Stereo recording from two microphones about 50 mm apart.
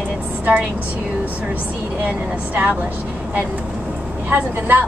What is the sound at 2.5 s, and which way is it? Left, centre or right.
Speech, right.